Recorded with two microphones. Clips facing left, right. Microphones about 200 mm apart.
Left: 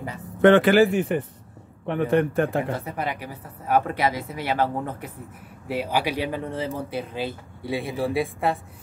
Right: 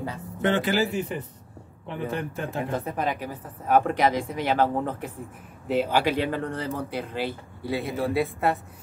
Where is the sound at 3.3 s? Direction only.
50° right (ahead or behind).